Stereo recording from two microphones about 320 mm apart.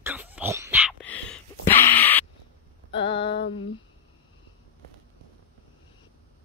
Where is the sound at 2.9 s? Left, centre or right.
Centre.